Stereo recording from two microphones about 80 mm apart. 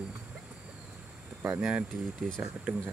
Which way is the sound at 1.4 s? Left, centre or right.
Right.